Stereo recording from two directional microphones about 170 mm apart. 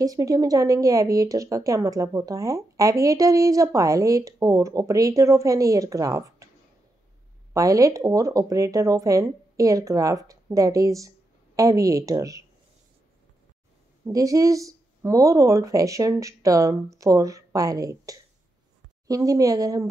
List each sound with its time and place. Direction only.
0.0 s a woman's voice: 20° right (ahead or behind)
7.5 s a woman's voice: 20° right (ahead or behind)
14.0 s a woman's voice: 20° right (ahead or behind)